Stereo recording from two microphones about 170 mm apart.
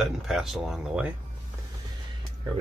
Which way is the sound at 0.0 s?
Centre (ahead or behind).